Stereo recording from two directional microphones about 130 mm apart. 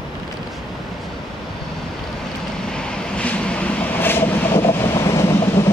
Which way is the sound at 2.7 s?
10° left (ahead or behind).